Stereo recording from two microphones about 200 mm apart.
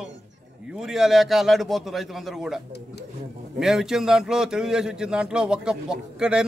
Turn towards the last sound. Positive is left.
turn(degrees=-5)  # may be behind; listen again after turning